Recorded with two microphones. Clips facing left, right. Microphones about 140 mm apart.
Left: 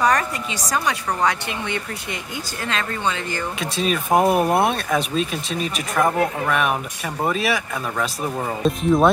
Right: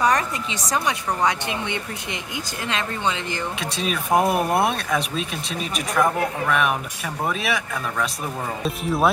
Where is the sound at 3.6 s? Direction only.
Centre (ahead or behind).